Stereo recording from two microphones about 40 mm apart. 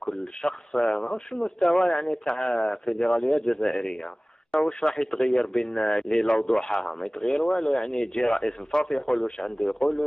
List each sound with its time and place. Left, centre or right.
0.4 s a man's voice: centre
0.9 s a man's voice: centre
1.7 s a man's voice: centre
3.6 s a man's voice: centre
6.2 s a man's voice: left